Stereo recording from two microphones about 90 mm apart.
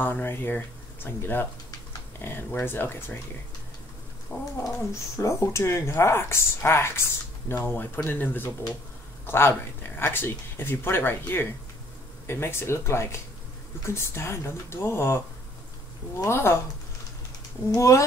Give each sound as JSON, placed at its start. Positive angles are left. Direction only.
{"t": 0.0, "sound": "speech", "side_deg": 20}
{"t": 4.6, "sound": "speech", "side_deg": 30}
{"t": 17.6, "sound": "speech", "side_deg": 35}